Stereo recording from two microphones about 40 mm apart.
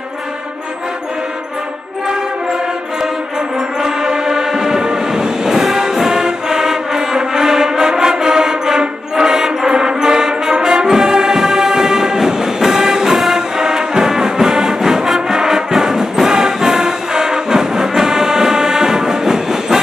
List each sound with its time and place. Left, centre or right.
3.8 s music: centre